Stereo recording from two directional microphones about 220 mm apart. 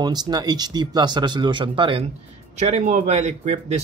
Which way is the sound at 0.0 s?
20° right (ahead or behind).